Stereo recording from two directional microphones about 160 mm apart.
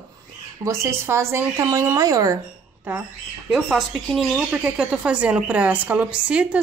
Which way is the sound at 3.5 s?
Centre (ahead or behind).